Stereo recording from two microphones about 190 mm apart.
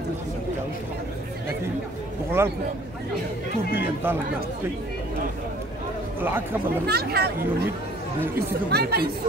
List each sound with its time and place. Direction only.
2.4 s speech: 15° right (ahead or behind)
3.7 s speech: 10° right (ahead or behind)
6.9 s speech: 55° right (ahead or behind)
8.6 s speech: 55° right (ahead or behind)